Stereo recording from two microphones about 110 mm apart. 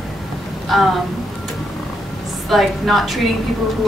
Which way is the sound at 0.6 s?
Centre (ahead or behind).